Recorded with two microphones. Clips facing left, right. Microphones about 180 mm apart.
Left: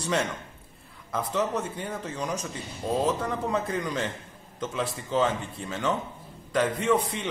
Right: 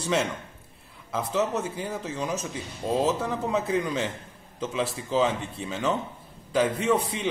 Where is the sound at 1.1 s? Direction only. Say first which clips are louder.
Right 1 dB; 5° right (ahead or behind).